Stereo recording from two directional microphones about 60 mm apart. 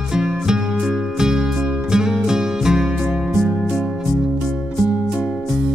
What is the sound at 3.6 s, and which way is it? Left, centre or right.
Music, centre.